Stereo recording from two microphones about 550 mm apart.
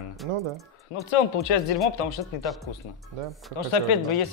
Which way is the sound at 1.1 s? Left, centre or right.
Left.